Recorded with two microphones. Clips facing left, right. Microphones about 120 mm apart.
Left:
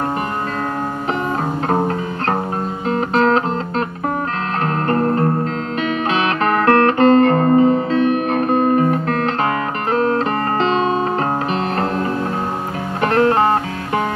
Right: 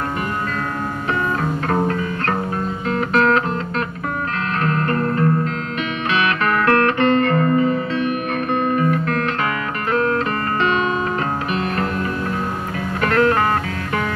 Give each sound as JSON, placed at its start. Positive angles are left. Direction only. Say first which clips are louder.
{"t": 1.4, "sound": "music", "louder": "left 2 dB", "side_deg": 30}
{"t": 13.0, "sound": "music", "louder": "left 2 dB", "side_deg": 25}